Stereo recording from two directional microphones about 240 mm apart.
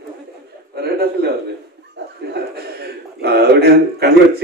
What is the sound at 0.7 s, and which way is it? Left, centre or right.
A man's voice, right.